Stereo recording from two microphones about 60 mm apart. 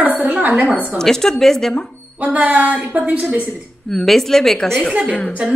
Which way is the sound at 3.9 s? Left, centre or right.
Centre.